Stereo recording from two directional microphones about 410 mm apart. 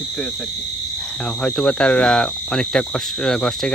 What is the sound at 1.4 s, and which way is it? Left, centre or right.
Speech, centre.